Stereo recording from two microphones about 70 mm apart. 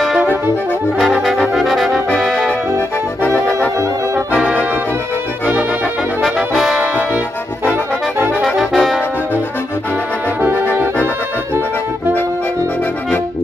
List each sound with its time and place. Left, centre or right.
0.9 s brass instrument: centre
2.1 s music: centre
6.2 s brass instrument: centre
7.6 s accordion: right
8.4 s brass instrument: centre